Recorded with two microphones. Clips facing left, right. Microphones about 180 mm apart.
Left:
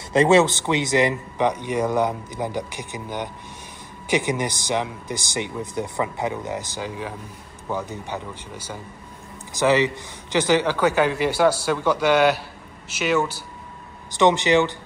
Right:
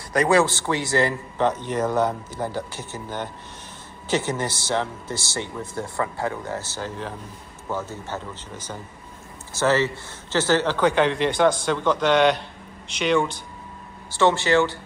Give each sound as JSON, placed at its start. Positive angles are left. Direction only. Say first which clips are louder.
{"t": 0.1, "sound": "a man's voice", "louder": "left 3 dB", "side_deg": 25}
{"t": 14.1, "sound": "a man's voice", "louder": "left 2 dB", "side_deg": 20}